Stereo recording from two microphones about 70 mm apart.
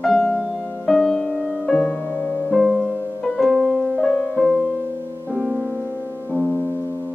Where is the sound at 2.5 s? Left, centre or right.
Centre.